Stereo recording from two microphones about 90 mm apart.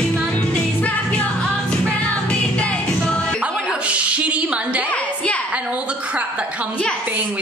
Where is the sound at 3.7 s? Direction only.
15° right (ahead or behind).